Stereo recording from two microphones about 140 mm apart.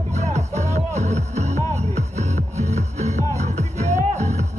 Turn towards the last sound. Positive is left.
turn(degrees=-55)  # may be behind; listen again after turning